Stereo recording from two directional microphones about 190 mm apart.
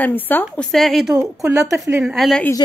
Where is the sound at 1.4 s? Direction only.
15° right (ahead or behind).